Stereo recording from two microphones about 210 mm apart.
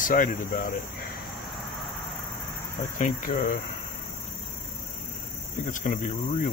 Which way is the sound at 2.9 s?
40° left (ahead or behind).